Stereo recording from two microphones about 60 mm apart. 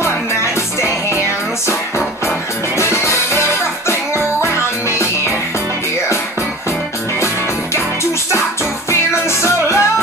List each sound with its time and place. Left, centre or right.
2.8 s music: left
9.1 s music: left